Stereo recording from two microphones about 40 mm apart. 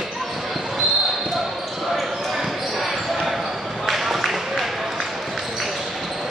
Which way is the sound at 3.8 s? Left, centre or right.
Centre.